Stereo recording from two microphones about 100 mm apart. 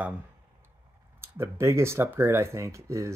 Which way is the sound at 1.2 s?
25° right (ahead or behind).